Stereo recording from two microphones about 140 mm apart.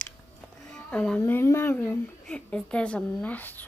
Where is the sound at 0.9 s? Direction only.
10° left (ahead or behind).